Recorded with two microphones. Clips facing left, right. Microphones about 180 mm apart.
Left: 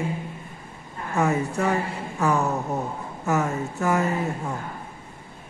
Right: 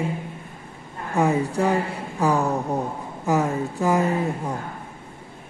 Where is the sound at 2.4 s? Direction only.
15° right (ahead or behind).